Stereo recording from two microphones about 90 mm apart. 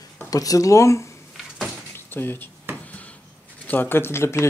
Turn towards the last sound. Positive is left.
turn(degrees=30)  # may be behind; listen again after turning